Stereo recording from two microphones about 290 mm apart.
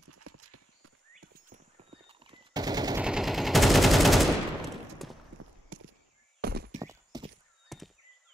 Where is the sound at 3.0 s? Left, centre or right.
Centre.